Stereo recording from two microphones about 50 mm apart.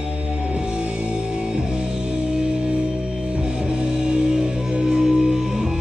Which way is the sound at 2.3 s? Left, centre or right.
Centre.